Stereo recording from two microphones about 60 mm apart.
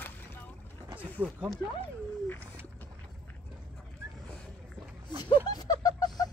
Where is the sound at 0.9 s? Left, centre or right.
Right.